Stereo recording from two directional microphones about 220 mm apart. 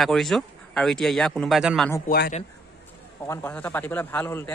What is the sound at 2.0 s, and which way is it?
Speech, 45° left (ahead or behind).